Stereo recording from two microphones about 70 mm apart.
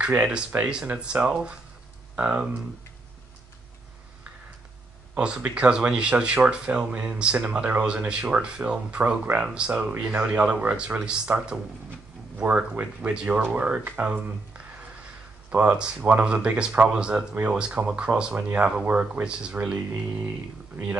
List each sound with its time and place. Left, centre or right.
0.2 s speech: centre
5.1 s speech: centre
19.5 s speech: right